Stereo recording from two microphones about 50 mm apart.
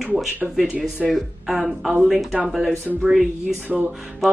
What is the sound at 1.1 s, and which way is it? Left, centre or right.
Speech, centre.